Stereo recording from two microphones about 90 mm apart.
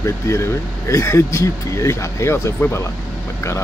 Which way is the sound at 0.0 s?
30° left (ahead or behind).